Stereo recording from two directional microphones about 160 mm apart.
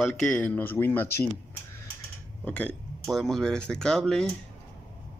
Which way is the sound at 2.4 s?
10° left (ahead or behind).